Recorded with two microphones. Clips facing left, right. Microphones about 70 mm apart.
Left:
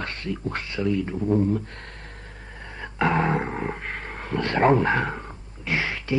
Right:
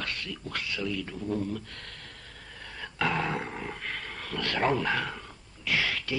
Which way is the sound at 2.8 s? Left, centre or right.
Left.